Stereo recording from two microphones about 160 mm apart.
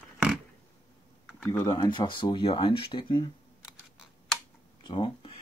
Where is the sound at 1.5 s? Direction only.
20° left (ahead or behind).